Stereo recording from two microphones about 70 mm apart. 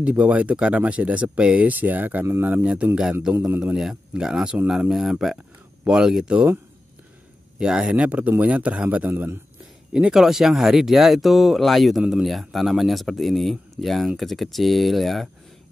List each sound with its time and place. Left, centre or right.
0.2 s speech: centre
3.0 s speech: centre
7.5 s speech: centre
9.1 s a man's voice: right
9.9 s speech: centre